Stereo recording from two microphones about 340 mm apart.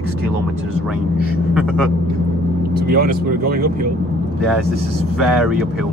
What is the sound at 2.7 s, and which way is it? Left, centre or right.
Speech, right.